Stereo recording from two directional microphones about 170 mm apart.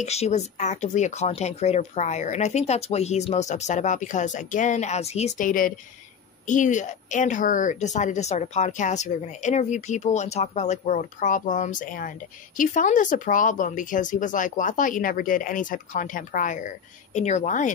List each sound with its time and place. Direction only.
0.0 s a woman's voice: 40° left (ahead or behind)
5.5 s a woman's voice: 55° left (ahead or behind)